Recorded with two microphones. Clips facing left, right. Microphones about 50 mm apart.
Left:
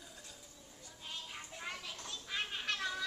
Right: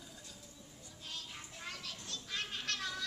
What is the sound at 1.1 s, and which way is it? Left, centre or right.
Children playing, centre.